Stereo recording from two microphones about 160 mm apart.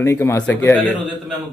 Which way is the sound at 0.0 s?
15° left (ahead or behind).